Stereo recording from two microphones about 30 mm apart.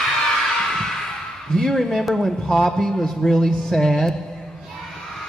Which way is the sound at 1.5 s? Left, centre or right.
Centre.